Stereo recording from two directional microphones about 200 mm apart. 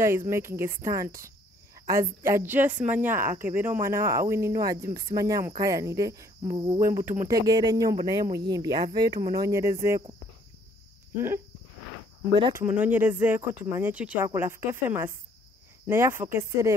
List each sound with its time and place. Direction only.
0.3 s speech: 15° right (ahead or behind)
11.1 s speech: 10° right (ahead or behind)
12.3 s cricket: 25° right (ahead or behind)
12.5 s speech: 10° right (ahead or behind)